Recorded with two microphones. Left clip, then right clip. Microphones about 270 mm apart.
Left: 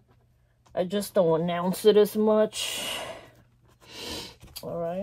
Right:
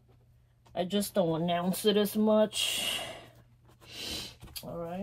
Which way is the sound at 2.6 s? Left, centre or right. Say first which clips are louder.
Even; centre.